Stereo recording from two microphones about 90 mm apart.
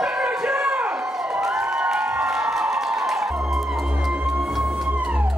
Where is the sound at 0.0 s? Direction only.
10° right (ahead or behind).